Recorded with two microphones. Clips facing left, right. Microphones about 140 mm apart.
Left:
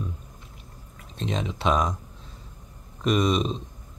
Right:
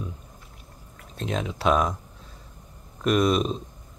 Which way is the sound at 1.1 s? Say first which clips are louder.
Even; centre (ahead or behind).